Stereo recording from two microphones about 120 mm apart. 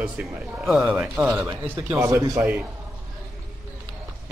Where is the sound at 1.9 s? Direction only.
25° right (ahead or behind).